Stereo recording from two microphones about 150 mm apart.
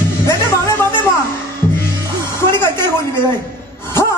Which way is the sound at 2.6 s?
15° left (ahead or behind).